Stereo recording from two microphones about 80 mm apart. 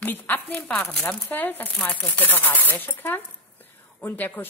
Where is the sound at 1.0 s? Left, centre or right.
Left.